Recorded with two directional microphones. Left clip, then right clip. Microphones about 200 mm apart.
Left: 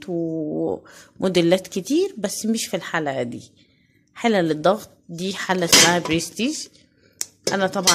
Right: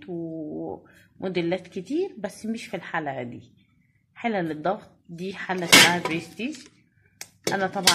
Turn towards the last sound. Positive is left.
turn(degrees=30)  # may be behind; listen again after turning